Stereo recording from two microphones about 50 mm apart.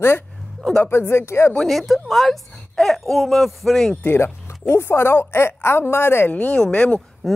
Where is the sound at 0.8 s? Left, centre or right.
Left.